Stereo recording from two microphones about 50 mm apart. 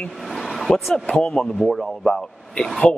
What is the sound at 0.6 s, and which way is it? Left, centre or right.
Speech, centre.